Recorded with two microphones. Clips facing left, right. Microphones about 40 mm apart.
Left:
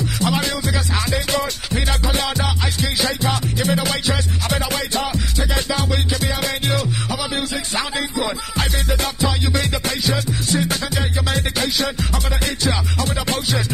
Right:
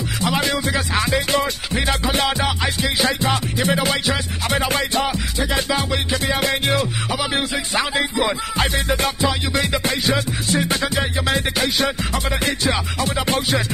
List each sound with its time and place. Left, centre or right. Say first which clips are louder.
0.7 s music: right 2 dB; right
3.8 s music: right 1 dB; centre
4.5 s music: right 3 dB; right
5.0 s music: right 1 dB; centre; by 9.1 s right
9.6 s music: right 2 dB; centre
11.5 s music: right 1 dB; right